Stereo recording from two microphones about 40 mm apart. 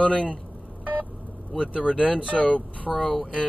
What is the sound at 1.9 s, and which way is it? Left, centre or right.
Speech, left.